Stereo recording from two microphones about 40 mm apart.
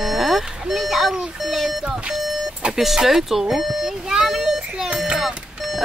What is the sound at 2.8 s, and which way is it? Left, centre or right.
Speech, centre.